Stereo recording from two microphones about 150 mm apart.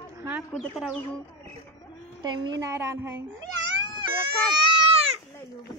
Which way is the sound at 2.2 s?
30° right (ahead or behind).